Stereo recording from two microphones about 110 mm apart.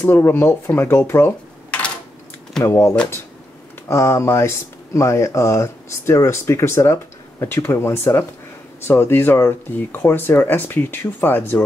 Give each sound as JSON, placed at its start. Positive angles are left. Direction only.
{"t": 0.0, "sound": "speech", "side_deg": 20}
{"t": 2.6, "sound": "speech", "side_deg": 25}